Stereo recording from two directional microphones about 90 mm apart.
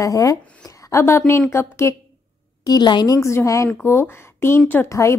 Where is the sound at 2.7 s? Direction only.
55° left (ahead or behind); by 5.2 s 35° left (ahead or behind).